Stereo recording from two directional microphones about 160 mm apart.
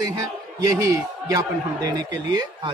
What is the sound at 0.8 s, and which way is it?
A man's voice, 20° right (ahead or behind).